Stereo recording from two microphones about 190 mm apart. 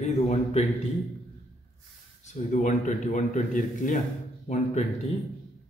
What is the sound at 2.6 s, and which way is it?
A man's voice, 40° left (ahead or behind).